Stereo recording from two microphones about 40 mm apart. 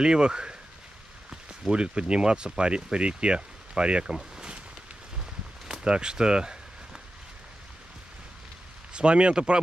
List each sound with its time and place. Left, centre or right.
0.0 s speech: right
1.7 s speech: right
5.7 s a sound: right
8.9 s speech: right